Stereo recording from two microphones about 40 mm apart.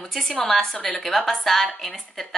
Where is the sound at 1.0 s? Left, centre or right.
Centre.